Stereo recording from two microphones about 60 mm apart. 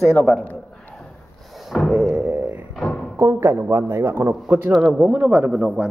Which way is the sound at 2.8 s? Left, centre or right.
Centre.